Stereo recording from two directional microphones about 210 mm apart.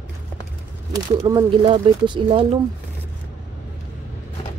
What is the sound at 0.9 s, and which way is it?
Speech, 20° right (ahead or behind).